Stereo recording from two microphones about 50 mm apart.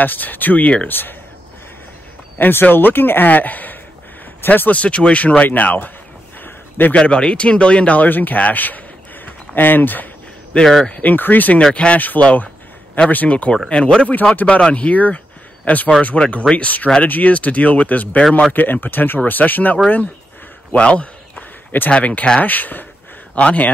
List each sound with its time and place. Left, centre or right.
0.0 s speech: left
0.8 s speech: left
2.3 s speech: left
6.9 s speech: centre; by 10.0 s left
10.6 s speech: centre
10.9 s speech: left
11.7 s speech: left
14.3 s speech: left
20.7 s a sound: left
21.9 s speech: left
22.4 s speech: left